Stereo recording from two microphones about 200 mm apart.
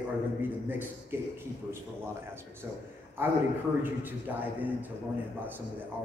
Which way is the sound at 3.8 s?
10° right (ahead or behind).